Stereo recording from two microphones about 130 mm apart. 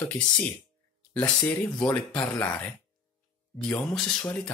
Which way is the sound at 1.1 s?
10° left (ahead or behind).